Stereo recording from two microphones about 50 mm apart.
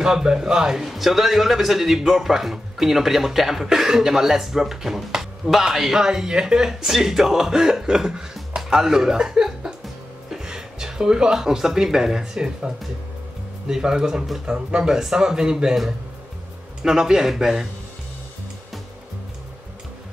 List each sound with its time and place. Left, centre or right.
0.0 s speech: centre